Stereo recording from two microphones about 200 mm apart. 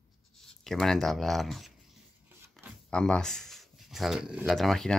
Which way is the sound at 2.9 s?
5° left (ahead or behind).